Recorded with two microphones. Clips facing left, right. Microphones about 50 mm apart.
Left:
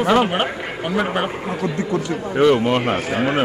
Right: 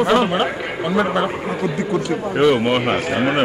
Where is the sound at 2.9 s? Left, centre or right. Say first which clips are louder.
Right 1 dB; right.